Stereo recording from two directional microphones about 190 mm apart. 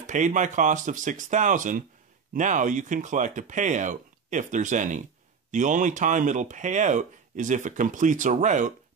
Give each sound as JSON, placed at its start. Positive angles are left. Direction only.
{"t": 0.0, "sound": "speech", "side_deg": -40}